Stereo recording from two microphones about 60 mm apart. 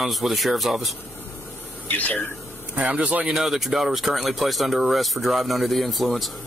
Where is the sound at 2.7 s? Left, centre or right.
Right.